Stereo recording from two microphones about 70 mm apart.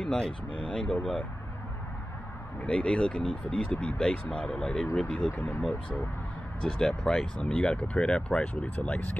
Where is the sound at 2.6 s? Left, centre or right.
Centre.